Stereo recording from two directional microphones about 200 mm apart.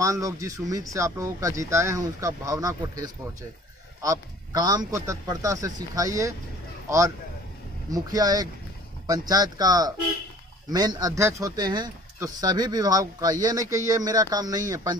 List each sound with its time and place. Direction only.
0.0 s speech: 15° right (ahead or behind)
7.9 s a man's voice: 20° right (ahead or behind)